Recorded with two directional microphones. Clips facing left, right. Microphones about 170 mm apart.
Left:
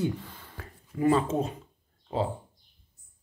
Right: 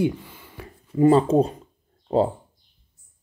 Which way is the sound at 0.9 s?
30° right (ahead or behind).